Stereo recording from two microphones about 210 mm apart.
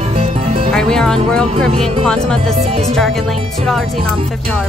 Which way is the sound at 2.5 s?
30° right (ahead or behind).